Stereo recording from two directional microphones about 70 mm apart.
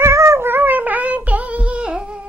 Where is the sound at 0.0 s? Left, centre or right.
Right.